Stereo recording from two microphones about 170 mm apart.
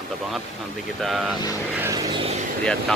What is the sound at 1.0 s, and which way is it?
Speech, centre (ahead or behind).